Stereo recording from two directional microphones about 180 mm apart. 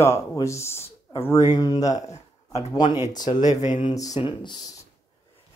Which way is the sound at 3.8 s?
20° left (ahead or behind).